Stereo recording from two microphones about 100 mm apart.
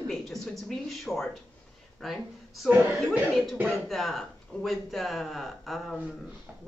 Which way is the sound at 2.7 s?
20° right (ahead or behind).